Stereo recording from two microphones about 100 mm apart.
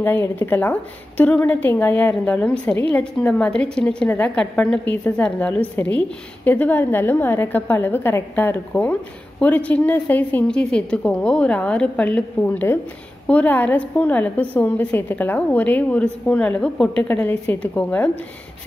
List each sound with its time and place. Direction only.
0.0 s a woman's voice: 20° left (ahead or behind)